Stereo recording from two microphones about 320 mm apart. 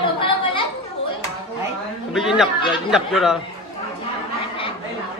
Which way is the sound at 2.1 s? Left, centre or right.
Centre.